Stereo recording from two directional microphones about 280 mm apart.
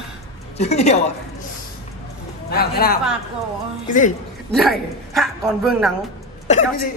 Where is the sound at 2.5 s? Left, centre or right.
Left.